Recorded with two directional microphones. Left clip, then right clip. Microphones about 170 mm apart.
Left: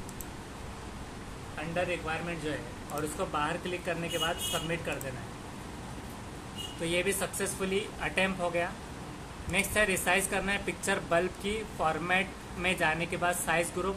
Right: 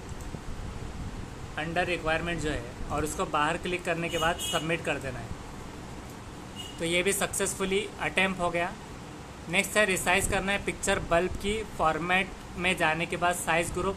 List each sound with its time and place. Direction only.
1.7 s a woman's voice: 40° right (ahead or behind)
6.8 s a woman's voice: 20° right (ahead or behind)